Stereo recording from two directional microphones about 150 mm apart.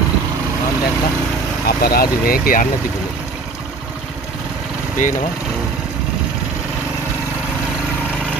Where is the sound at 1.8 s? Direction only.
90° left; by 2.6 s 75° left (ahead or behind).